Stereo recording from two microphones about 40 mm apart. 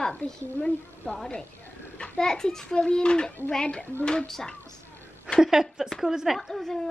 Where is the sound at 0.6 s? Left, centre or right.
Centre.